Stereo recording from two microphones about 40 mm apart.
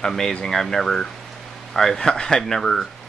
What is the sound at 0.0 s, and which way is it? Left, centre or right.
Speech, centre.